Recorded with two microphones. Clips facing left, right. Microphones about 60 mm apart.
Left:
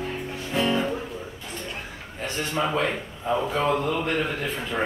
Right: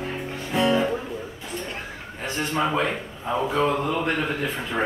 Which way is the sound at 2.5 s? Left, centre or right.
Centre.